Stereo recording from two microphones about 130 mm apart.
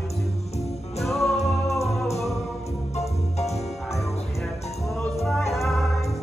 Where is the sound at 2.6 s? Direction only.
55° left (ahead or behind).